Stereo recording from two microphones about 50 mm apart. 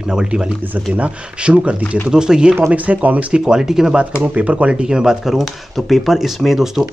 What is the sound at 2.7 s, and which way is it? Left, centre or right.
Speech, right.